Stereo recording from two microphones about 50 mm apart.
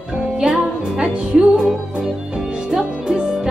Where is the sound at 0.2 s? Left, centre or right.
Centre.